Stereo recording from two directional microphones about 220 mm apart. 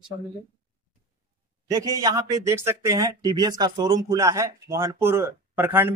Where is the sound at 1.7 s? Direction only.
15° right (ahead or behind).